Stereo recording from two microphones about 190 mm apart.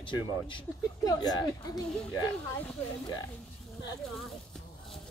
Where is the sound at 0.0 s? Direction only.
25° left (ahead or behind).